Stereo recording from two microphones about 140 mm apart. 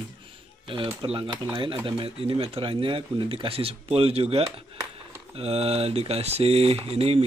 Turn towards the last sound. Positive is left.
turn(degrees=-45)  # may be behind; listen again after turning